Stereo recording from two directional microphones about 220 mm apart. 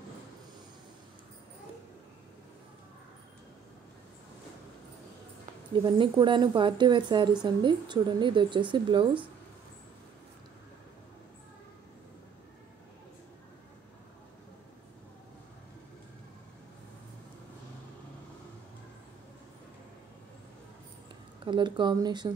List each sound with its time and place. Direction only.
5.9 s speech: 20° right (ahead or behind)
21.5 s speech: 20° right (ahead or behind)